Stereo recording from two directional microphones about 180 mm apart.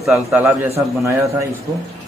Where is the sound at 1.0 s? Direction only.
15° right (ahead or behind).